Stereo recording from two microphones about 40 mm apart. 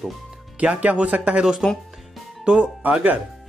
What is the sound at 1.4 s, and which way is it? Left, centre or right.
Speech, centre.